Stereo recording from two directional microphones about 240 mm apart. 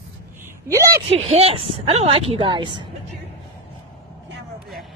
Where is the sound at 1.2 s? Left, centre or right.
Right.